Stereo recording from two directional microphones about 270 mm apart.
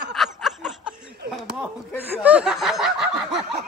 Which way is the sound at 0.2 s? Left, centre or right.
Centre.